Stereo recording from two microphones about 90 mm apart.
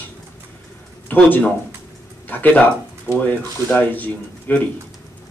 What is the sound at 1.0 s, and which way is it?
Speech, 20° left (ahead or behind).